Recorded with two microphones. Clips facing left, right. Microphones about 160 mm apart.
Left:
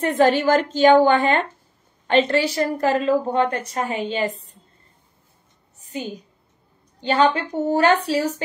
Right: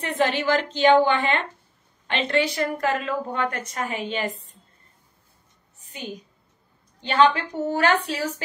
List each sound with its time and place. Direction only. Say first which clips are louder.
0.0 s a woman's voice: left 6 dB; 45° left (ahead or behind); by 4.3 s 30° left (ahead or behind)
7.0 s a woman's voice: left 1 dB; 35° left (ahead or behind)